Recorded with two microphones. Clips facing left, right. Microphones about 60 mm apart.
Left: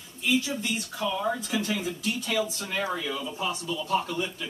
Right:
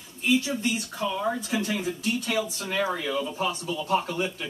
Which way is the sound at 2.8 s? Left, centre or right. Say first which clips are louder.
Right 4 dB; right.